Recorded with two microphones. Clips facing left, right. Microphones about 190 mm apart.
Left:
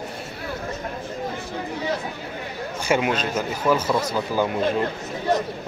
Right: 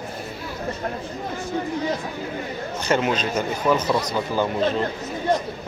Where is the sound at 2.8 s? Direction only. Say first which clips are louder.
Even; 10° left (ahead or behind).